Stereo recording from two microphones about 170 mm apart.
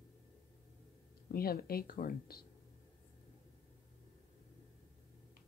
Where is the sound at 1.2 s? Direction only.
60° left (ahead or behind).